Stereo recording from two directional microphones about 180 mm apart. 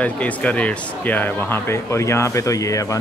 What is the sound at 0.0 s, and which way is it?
Speech, 10° left (ahead or behind).